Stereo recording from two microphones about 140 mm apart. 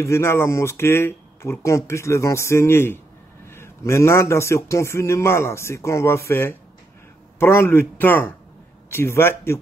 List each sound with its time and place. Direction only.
0.0 s a man's voice: 20° left (ahead or behind)